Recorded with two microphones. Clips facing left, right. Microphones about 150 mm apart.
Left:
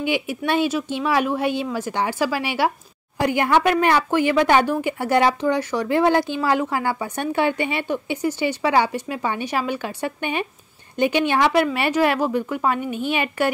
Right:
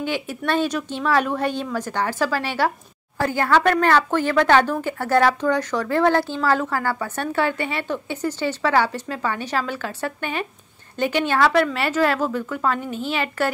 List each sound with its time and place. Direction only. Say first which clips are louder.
0.0 s speech: left 2 dB; 10° left (ahead or behind)